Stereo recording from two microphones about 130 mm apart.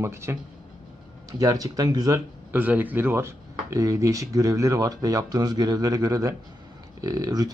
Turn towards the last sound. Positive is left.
turn(degrees=-30)  # may be behind; listen again after turning